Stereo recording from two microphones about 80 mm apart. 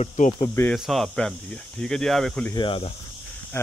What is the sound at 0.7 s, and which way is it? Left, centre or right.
Speech, centre.